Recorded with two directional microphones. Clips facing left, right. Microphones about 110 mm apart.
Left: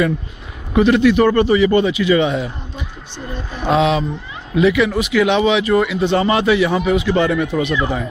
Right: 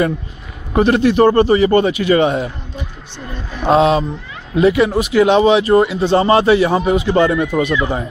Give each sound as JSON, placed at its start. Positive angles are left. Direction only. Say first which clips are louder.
{"t": 0.7, "sound": "a man's voice", "louder": "even", "side_deg": -40}
{"t": 3.6, "sound": "speech", "louder": "right 3 dB", "side_deg": -40}